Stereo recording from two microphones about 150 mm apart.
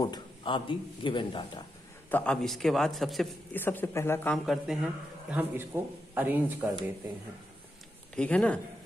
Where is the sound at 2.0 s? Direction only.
10° left (ahead or behind).